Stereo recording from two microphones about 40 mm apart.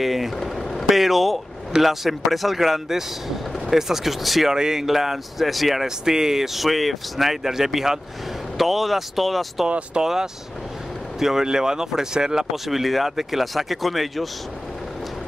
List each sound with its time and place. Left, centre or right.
0.0 s speech: centre
0.4 s a sound: centre
0.8 s speech: centre
4.6 s speech: centre
9.7 s speech: right
11.1 s speech: centre
12.6 s speech: centre